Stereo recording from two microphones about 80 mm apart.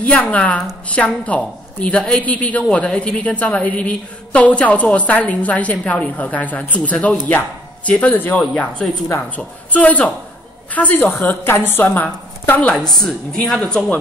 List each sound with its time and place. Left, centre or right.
0.0 s a woman's voice: centre
9.7 s a woman's voice: centre
12.7 s speech: centre